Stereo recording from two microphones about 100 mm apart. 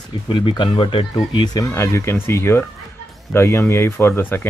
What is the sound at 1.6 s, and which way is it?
Speech, 30° left (ahead or behind).